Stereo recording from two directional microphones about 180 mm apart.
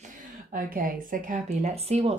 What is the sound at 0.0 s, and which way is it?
A woman's voice, 50° right (ahead or behind).